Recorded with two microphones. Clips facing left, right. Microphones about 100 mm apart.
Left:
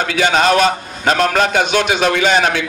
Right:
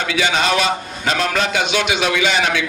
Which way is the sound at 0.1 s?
45° left (ahead or behind).